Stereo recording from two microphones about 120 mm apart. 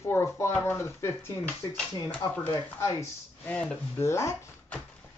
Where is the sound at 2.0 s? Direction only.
10° left (ahead or behind).